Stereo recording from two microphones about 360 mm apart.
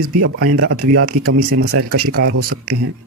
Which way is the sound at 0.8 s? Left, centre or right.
Right.